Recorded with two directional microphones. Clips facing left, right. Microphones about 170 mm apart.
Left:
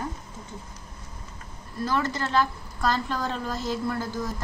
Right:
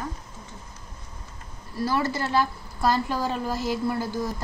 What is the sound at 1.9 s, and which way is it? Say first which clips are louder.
A woman's voice: right 1 dB; 10° right (ahead or behind).